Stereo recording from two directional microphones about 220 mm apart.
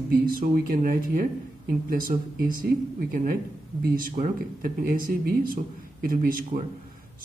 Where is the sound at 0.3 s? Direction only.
40° right (ahead or behind).